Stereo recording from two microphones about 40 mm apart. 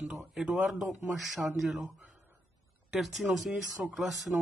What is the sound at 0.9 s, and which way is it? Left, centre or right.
Speech, right.